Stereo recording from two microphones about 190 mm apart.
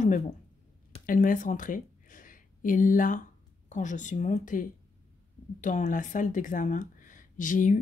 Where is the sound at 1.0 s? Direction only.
45° left (ahead or behind).